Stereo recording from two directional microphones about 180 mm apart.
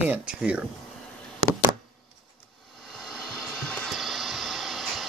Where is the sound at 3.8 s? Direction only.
Centre (ahead or behind).